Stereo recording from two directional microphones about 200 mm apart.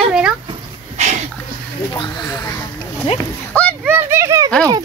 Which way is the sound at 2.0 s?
20° left (ahead or behind).